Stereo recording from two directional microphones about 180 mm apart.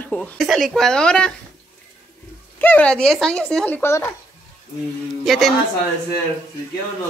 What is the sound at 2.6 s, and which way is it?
Speech, 10° left (ahead or behind).